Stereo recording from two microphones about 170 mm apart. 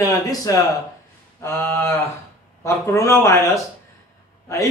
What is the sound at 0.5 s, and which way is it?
Speech, 20° left (ahead or behind).